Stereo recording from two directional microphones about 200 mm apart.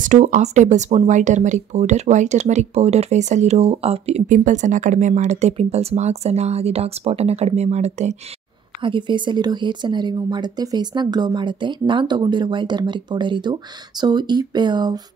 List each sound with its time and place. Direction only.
0.0 s speech: 35° right (ahead or behind)
8.8 s speech: 25° right (ahead or behind)